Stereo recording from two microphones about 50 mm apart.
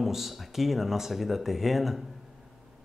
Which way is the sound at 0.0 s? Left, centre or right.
Centre.